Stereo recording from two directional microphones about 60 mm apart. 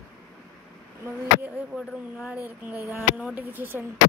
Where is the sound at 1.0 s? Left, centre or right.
Right.